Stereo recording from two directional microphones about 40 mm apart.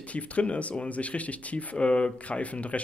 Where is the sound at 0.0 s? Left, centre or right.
Left.